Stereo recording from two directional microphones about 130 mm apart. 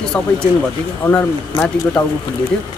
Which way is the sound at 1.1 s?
15° left (ahead or behind).